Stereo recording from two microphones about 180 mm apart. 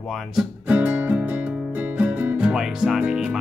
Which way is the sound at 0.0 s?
Centre (ahead or behind).